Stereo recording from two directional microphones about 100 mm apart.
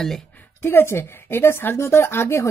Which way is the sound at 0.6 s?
20° left (ahead or behind).